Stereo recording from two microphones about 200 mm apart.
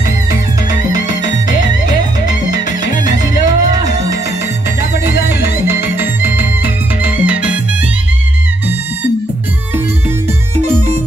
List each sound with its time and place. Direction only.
3.4 s music: 20° right (ahead or behind)